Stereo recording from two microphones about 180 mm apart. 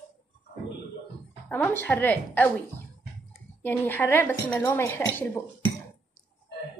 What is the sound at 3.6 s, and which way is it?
Speech, 10° left (ahead or behind).